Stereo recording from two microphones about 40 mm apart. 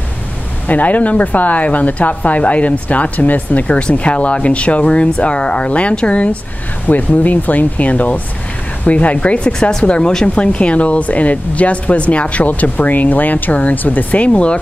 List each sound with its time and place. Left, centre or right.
0.7 s speech: left
3.7 s speech: left
6.9 s speech: left
9.5 s speech: centre